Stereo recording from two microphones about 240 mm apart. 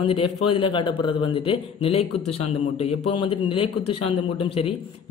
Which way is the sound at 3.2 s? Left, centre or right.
Left.